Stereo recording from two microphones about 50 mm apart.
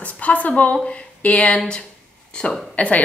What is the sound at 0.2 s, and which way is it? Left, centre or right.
A woman's voice, left.